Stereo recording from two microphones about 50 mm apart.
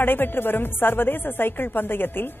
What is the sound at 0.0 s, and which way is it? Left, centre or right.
Speech, left.